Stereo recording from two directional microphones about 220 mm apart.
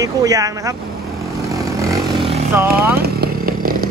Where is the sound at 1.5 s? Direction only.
15° right (ahead or behind).